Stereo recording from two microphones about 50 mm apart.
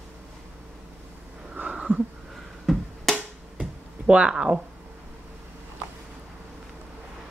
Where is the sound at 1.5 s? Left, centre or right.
Right.